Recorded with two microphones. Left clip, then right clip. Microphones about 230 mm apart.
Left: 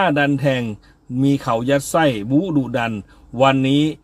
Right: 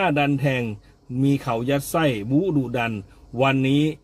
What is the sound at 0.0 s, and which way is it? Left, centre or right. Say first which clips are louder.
Speech: left 4 dB; centre.